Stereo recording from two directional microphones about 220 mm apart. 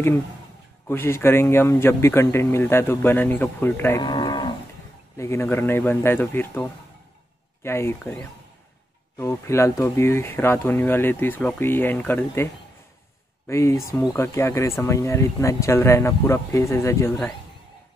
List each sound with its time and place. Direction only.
0.8 s speech: 10° left (ahead or behind)
4.0 s livestock: 20° left (ahead or behind)
5.1 s speech: 10° left (ahead or behind)
13.5 s speech: 15° left (ahead or behind)